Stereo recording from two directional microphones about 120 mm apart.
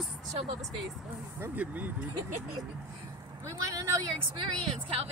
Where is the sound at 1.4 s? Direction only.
15° right (ahead or behind).